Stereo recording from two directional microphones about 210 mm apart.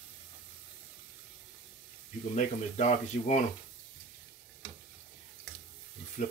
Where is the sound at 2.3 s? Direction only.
35° left (ahead or behind).